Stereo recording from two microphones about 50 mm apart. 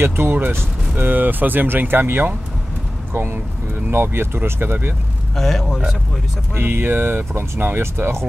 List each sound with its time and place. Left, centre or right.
0.0 s speech: right
0.9 s speech: right
5.3 s a man's voice: centre
6.5 s speech: right